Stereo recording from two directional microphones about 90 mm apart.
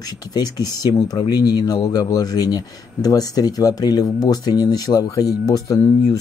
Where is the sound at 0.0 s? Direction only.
45° left (ahead or behind).